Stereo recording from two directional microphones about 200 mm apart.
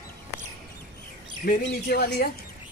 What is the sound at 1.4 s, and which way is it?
Speech, 45° left (ahead or behind).